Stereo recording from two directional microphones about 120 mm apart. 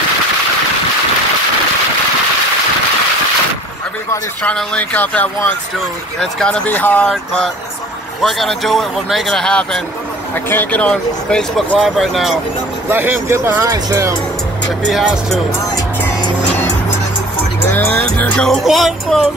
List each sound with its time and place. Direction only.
4.4 s speech: 10° left (ahead or behind)
8.2 s speech: centre (ahead or behind)
12.9 s speech: 20° right (ahead or behind)
14.9 s speech: centre (ahead or behind)
17.6 s music: 20° left (ahead or behind)
18.5 s speech: centre (ahead or behind)